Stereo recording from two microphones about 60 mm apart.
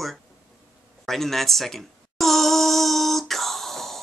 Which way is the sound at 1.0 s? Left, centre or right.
Centre.